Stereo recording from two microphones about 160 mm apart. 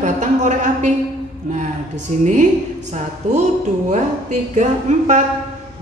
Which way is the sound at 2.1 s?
45° right (ahead or behind).